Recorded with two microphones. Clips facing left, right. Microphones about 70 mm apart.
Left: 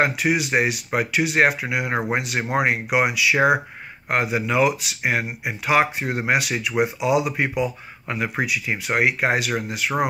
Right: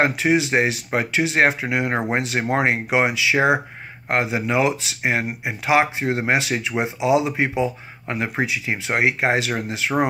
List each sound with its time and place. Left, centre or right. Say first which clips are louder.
0.0 s speech: right 2 dB; right